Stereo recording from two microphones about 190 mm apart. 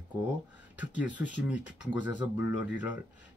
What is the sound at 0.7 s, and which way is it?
Speech, 5° right (ahead or behind).